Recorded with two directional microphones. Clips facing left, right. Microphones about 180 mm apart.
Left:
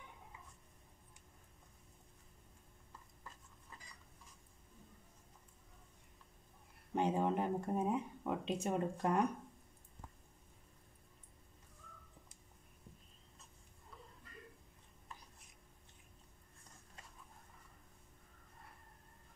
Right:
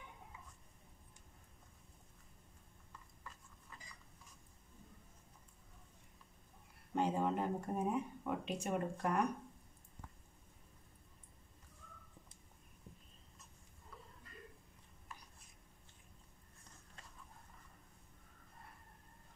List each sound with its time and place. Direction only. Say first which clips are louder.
7.0 s speech: left 1 dB; 20° left (ahead or behind)